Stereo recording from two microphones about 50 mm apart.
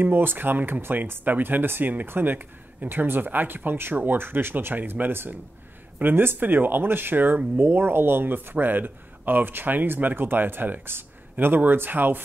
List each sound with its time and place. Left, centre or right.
0.0 s speech: right